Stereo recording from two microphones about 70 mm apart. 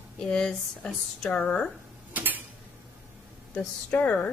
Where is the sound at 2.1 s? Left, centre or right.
Right.